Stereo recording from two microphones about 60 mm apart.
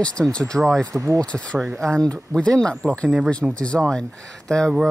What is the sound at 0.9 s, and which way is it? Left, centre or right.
Speech, right.